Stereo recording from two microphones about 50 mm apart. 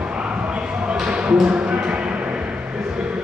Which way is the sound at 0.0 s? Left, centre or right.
Right.